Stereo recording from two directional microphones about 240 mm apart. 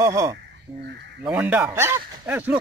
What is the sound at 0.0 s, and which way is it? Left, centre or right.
Speech, centre.